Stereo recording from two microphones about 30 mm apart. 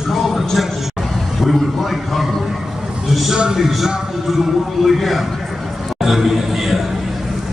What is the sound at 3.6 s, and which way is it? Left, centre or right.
A man's voice, centre.